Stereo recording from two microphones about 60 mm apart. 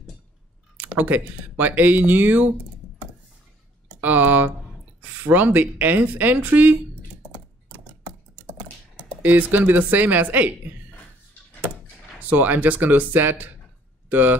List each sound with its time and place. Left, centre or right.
0.9 s speech: right
4.0 s a sound: right
5.0 s speech: right
7.3 s typing: right
8.5 s speech: right
12.2 s speech: right